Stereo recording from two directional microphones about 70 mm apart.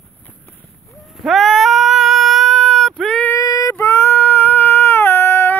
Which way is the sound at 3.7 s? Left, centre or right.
Left.